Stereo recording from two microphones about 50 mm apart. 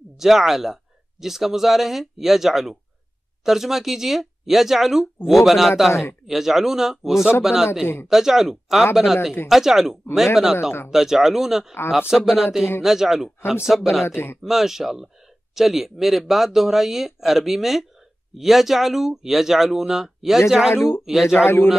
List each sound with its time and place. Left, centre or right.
0.2 s speech: centre
7.8 s speech: left
8.1 s speech: centre
14.0 s speech: left
14.4 s speech: centre
20.7 s speech: left
21.0 s speech: centre